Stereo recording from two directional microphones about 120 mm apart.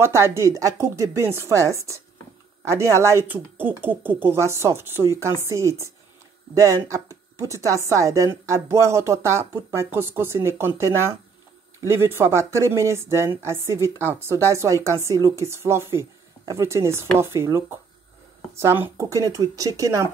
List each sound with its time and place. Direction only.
0.0 s a woman's voice: 20° right (ahead or behind)